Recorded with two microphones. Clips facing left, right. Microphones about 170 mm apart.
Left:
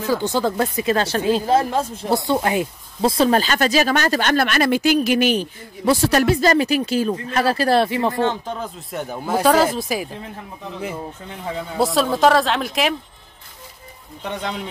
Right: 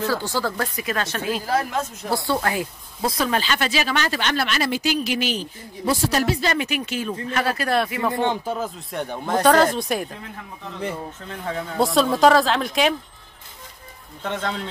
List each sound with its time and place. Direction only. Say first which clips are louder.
0.0 s speech: left 4 dB; 15° left (ahead or behind)
3.3 s speech: left 5 dB; 40° left (ahead or behind); by 6.4 s 60° left (ahead or behind)
6.4 s speech: left 7 dB; 35° left (ahead or behind)
8.1 s speech: left 1 dB; 15° right (ahead or behind)
8.5 s speech: right 1 dB; centre (ahead or behind)
11.2 s a man's voice: right 1 dB; 10° left (ahead or behind)
11.8 s speech: even; centre (ahead or behind)
14.2 s a man's voice: even; 15° left (ahead or behind)